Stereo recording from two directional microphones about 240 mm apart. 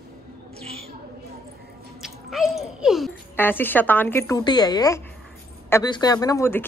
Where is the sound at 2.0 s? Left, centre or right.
Centre.